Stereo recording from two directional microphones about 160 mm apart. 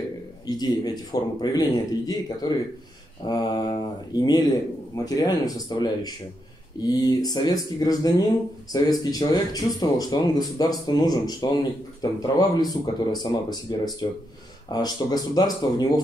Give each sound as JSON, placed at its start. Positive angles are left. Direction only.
{"t": 0.5, "sound": "speech", "side_deg": 25}